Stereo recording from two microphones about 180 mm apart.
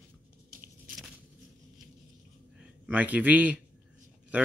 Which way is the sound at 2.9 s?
10° right (ahead or behind).